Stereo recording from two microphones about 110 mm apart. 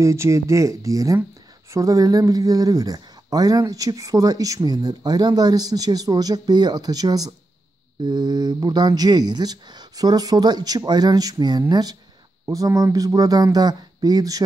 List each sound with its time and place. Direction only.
0.0 s speech: 25° right (ahead or behind)